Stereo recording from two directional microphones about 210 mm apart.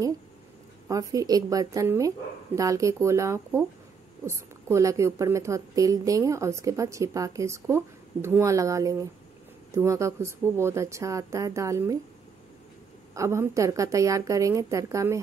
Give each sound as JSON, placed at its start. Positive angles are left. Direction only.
{"t": 0.8, "sound": "a woman's voice", "side_deg": -15}
{"t": 13.1, "sound": "a woman's voice", "side_deg": -15}